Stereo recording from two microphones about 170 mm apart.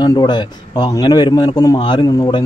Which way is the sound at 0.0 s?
25° left (ahead or behind).